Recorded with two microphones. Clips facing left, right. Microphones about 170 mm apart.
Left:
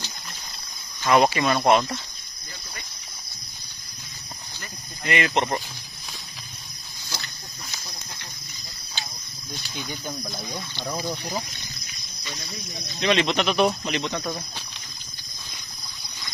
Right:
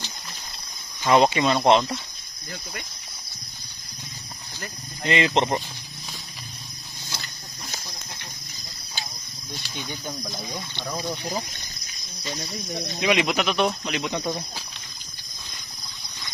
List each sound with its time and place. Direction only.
1.0 s speech: 20° right (ahead or behind)
5.0 s speech: 25° right (ahead or behind)
9.5 s speech: centre (ahead or behind)
13.0 s speech: 10° right (ahead or behind)
14.0 s speech: 15° right (ahead or behind)